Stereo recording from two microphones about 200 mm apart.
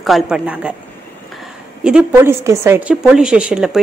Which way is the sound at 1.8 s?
5° right (ahead or behind).